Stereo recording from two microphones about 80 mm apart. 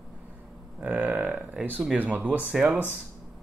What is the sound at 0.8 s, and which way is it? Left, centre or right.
Speech, centre.